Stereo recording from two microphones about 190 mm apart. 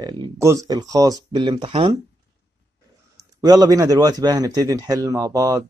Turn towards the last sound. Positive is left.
turn(degrees=-20)  # may be behind; listen again after turning